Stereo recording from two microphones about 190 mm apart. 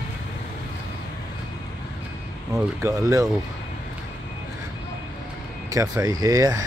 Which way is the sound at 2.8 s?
15° right (ahead or behind).